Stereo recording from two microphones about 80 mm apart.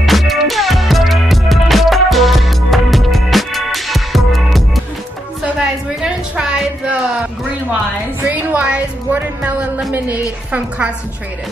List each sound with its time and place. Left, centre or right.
0.0 s music: centre
5.9 s a sound: centre
8.3 s music: centre
9.9 s a woman's voice: right